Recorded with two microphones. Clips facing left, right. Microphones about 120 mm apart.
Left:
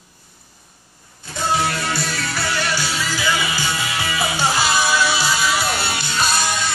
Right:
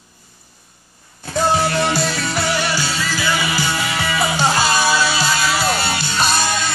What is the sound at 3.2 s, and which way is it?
Music, 20° left (ahead or behind).